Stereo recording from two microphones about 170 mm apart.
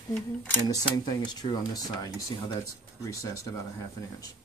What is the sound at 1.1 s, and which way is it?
Speech, 20° left (ahead or behind).